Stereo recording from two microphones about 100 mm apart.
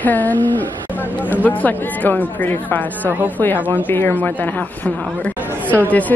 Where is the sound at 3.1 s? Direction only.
20° right (ahead or behind).